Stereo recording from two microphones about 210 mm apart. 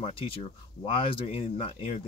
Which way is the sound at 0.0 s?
25° left (ahead or behind).